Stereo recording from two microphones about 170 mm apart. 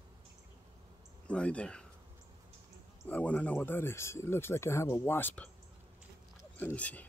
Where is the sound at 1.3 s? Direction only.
5° left (ahead or behind).